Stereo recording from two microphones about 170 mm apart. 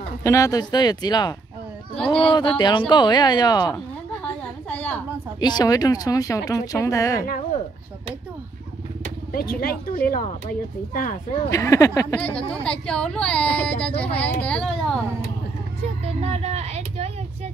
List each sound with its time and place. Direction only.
0.2 s speech: 20° left (ahead or behind)
4.6 s a sound: 10° left (ahead or behind)
5.4 s speech: 25° left (ahead or behind)
9.3 s speech: 60° left (ahead or behind)
11.4 s speech: 20° left (ahead or behind)
12.8 s speech: 5° left (ahead or behind)
16.2 s speech: 40° right (ahead or behind)